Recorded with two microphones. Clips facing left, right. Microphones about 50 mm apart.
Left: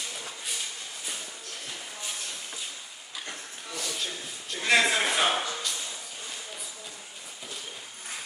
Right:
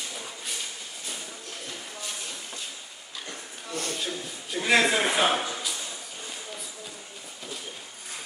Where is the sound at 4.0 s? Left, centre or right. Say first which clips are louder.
Right 2 dB; centre.